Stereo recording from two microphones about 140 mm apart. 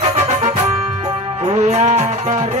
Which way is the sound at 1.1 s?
45° right (ahead or behind).